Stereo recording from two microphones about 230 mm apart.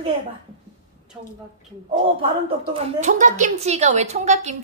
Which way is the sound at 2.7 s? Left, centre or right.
Right.